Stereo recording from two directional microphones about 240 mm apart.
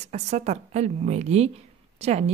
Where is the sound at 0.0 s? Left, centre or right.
Right.